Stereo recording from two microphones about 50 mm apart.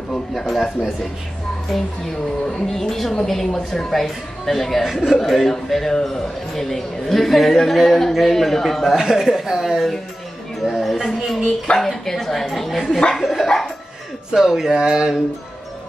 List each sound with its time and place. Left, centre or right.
0.1 s a man's voice: centre
2.4 s a man's voice: centre
4.8 s a man's voice: centre
8.9 s speech: centre
10.6 s speech: centre
11.1 s a man's voice: centre
14.3 s speech: centre